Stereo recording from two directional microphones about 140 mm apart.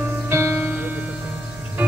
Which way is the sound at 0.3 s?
15° right (ahead or behind).